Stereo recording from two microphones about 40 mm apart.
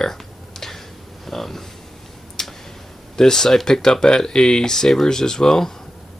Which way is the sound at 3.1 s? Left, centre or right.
Centre.